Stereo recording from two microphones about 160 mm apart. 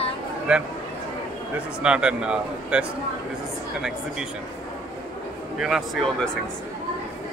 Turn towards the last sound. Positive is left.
turn(degrees=0)  # may be behind; listen again after turning